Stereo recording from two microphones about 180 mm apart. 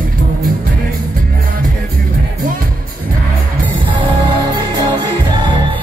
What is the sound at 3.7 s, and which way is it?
Music, 25° right (ahead or behind).